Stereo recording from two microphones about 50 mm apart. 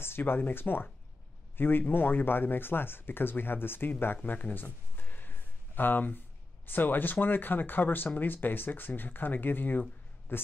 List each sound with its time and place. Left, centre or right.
0.0 s speech: left
4.2 s speech: left